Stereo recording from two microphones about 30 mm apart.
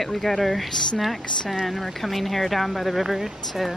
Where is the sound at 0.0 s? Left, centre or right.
Centre.